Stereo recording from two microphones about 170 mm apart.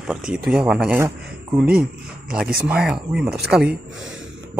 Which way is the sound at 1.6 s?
5° right (ahead or behind).